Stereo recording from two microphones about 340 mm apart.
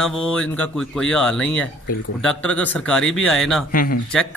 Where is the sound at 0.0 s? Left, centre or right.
Centre.